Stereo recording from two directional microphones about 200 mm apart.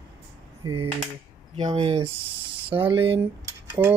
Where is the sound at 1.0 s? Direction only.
30° right (ahead or behind).